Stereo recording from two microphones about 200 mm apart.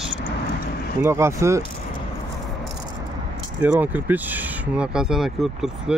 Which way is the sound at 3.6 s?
10° right (ahead or behind).